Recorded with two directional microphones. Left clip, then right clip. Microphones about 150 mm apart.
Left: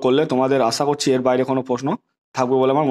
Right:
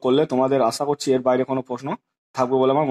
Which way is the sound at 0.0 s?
30° left (ahead or behind).